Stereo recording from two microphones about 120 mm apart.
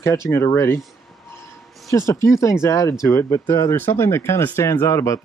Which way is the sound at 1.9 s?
25° left (ahead or behind).